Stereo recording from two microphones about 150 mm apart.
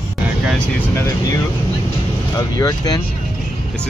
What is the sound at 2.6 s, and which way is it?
Speech, 25° left (ahead or behind).